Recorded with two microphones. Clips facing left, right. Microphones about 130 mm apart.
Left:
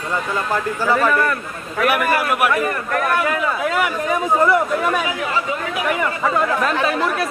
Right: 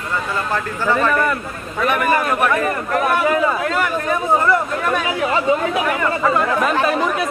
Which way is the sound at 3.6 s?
5° left (ahead or behind).